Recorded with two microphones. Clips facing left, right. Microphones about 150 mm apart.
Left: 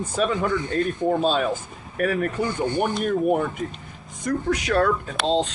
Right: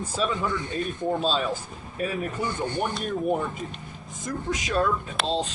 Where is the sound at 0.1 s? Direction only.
60° left (ahead or behind).